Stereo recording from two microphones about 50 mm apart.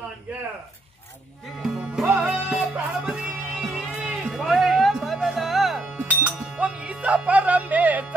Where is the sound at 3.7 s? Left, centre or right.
Centre.